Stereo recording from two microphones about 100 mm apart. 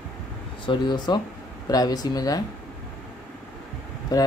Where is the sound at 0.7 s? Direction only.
50° left (ahead or behind).